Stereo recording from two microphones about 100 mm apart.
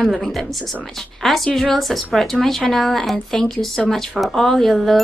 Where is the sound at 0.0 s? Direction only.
Centre (ahead or behind).